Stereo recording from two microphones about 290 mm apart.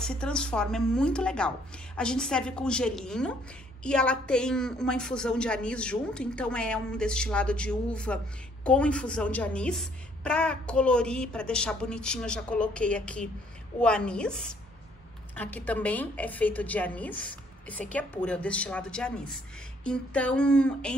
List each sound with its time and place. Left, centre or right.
0.0 s a woman's voice: centre